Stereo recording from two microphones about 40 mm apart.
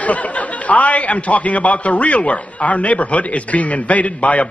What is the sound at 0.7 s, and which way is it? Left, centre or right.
A man's voice, left.